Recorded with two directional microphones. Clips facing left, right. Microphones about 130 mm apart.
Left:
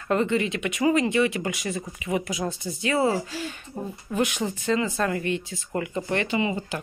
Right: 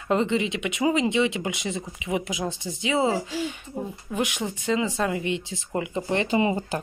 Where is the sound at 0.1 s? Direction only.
20° right (ahead or behind).